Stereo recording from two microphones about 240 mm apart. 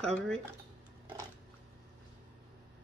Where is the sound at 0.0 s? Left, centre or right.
Centre.